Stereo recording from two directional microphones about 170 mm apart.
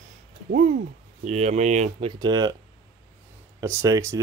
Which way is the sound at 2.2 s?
25° right (ahead or behind).